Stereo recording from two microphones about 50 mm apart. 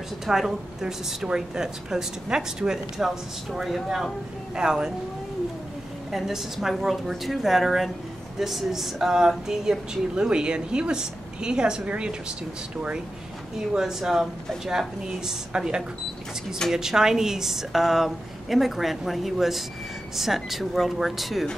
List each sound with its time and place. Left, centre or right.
0.3 s a woman's voice: centre
4.6 s a woman's voice: centre
6.1 s a woman's voice: centre
13.7 s a woman's voice: centre